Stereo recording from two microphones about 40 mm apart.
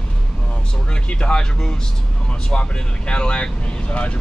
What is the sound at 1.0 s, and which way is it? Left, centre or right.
Speech, left.